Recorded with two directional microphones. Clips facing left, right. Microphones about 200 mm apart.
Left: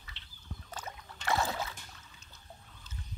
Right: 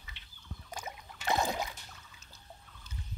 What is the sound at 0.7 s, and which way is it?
Rowboat, 10° right (ahead or behind).